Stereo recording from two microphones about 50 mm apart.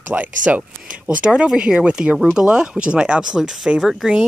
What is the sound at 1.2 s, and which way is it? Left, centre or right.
Speech, centre.